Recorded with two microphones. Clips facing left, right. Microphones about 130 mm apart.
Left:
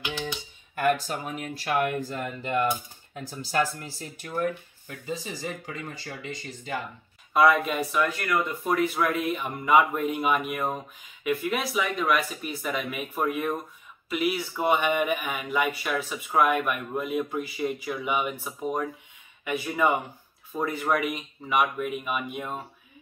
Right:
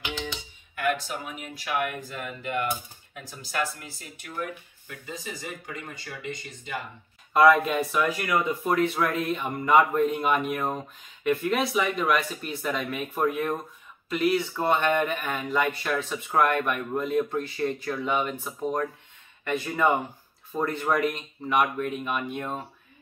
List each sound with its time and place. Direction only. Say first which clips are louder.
0.7 s speech: left 3 dB; 40° left (ahead or behind)
7.3 s speech: right 2 dB; centre (ahead or behind)